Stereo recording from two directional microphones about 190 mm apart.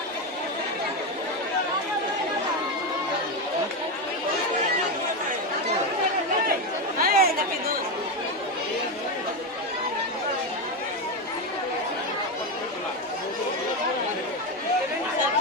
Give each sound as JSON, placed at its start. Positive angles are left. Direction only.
{"t": 7.0, "sound": "chatter", "side_deg": -50}